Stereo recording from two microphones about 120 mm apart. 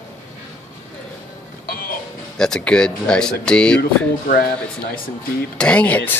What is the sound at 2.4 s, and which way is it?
Speech, 5° left (ahead or behind).